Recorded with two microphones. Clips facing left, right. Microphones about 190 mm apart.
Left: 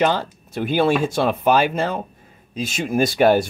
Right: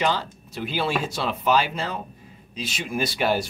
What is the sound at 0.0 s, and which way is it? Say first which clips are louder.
Speech: left 5 dB; 50° left (ahead or behind).